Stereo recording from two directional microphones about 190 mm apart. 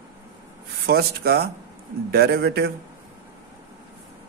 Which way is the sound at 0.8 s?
55° right (ahead or behind).